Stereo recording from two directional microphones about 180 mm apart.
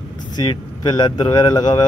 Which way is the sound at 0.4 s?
25° left (ahead or behind).